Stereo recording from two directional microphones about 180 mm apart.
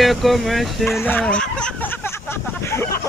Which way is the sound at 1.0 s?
10° left (ahead or behind).